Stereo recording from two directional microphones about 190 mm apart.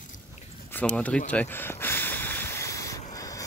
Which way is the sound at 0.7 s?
10° left (ahead or behind).